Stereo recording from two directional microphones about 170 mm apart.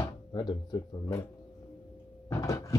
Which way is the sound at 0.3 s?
25° left (ahead or behind).